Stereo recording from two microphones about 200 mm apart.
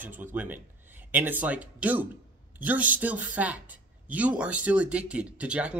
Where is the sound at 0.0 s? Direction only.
10° right (ahead or behind).